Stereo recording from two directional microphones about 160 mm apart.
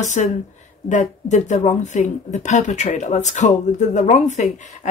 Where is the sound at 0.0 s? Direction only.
50° left (ahead or behind).